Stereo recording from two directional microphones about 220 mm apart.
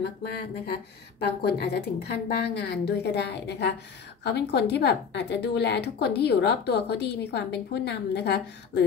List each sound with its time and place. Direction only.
0.0 s a woman's voice: 45° left (ahead or behind)